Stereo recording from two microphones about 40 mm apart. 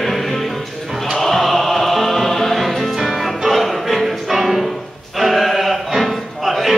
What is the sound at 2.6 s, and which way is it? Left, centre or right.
Music, centre.